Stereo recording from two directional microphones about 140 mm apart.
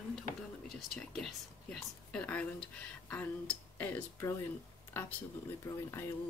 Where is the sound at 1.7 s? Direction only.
5° left (ahead or behind).